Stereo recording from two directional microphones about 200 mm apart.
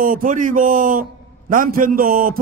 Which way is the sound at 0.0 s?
40° right (ahead or behind).